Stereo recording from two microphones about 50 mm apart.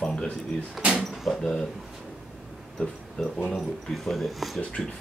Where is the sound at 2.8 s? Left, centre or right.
Left.